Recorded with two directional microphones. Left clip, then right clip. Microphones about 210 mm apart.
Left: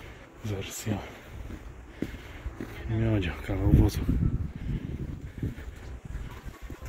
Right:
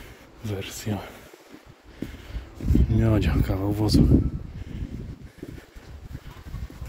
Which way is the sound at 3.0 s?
30° right (ahead or behind).